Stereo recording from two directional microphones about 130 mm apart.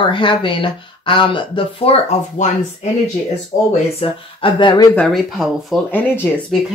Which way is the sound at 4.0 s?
40° left (ahead or behind).